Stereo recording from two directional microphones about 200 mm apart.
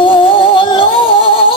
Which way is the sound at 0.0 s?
25° left (ahead or behind).